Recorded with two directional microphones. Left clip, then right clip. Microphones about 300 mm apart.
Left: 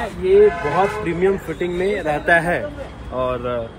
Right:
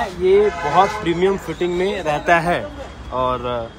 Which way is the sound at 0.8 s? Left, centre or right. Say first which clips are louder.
Right 3 dB; right.